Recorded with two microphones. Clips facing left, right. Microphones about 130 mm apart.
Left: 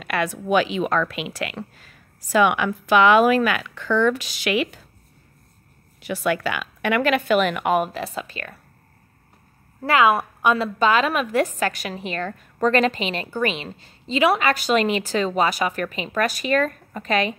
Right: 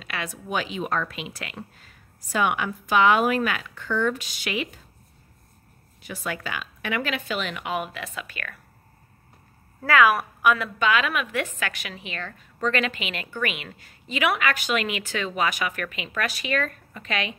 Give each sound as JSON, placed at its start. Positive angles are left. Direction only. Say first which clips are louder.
{"t": 0.0, "sound": "speech", "louder": "left 9 dB", "side_deg": 60}
{"t": 5.9, "sound": "speech", "louder": "left 9 dB", "side_deg": 80}
{"t": 9.8, "sound": "a woman's voice", "louder": "left 2 dB", "side_deg": 25}